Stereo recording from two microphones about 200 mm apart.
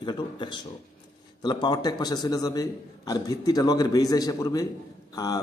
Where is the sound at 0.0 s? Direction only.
20° left (ahead or behind).